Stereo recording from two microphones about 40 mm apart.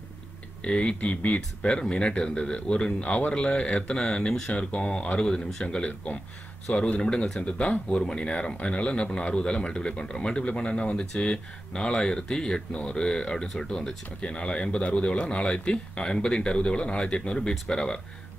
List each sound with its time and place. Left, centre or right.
0.7 s speech: left
1.7 s a man's voice: left
7.0 s a man's voice: left
14.2 s a man's voice: left